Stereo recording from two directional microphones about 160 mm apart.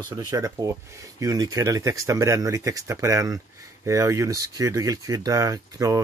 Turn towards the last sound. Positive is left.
turn(degrees=-20)  # may be behind; listen again after turning